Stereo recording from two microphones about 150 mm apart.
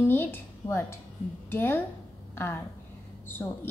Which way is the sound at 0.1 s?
15° left (ahead or behind).